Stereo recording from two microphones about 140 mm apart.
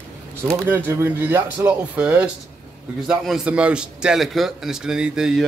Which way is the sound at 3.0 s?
5° right (ahead or behind).